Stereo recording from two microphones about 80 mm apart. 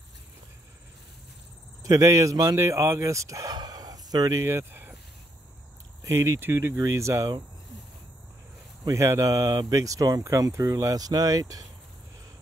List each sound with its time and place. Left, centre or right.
1.8 s speech: right
3.5 s chicken: right
6.0 s speech: right
8.8 s speech: right